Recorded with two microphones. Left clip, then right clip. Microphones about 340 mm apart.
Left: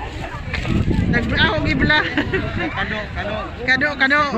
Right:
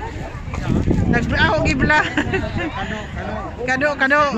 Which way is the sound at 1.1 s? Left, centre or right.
Centre.